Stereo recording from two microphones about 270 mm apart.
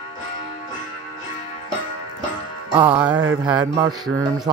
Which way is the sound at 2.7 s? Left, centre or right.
Centre.